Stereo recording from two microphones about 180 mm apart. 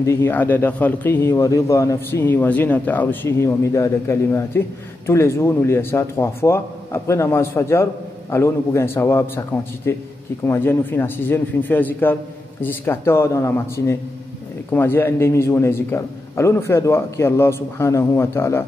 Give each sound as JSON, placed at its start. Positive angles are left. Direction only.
{"t": 0.0, "sound": "speech", "side_deg": 15}